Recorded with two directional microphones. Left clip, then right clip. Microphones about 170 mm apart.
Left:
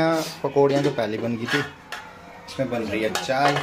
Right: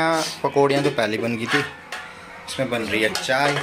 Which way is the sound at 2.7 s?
Centre (ahead or behind).